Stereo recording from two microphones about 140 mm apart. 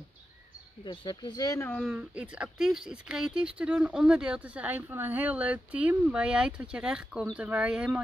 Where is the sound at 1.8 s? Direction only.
10° right (ahead or behind).